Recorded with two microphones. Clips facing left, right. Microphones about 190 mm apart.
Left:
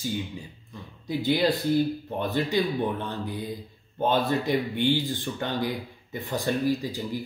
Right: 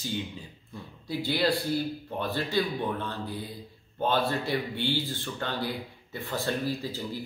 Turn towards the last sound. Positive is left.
turn(degrees=15)  # may be behind; listen again after turning